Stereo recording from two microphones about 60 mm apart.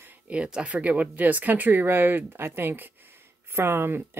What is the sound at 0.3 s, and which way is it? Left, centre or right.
Speech, centre.